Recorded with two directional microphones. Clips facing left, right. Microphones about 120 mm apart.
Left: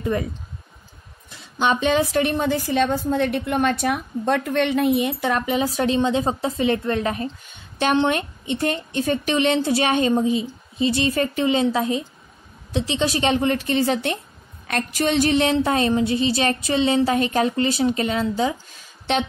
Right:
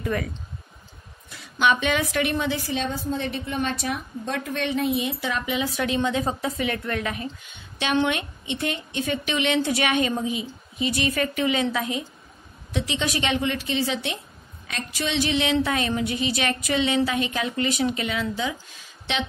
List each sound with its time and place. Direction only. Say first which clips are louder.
0.0 s speech: left 3 dB; 25° left (ahead or behind)
1.3 s a woman's voice: left 1 dB; 30° left (ahead or behind)
5.9 s a woman's voice: left 4 dB; 25° left (ahead or behind); by 19.2 s 45° left (ahead or behind)